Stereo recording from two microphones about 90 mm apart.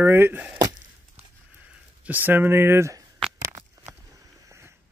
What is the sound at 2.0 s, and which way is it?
Speech, 20° right (ahead or behind).